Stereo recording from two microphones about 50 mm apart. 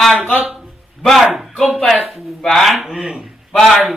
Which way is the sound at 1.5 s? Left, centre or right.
Centre.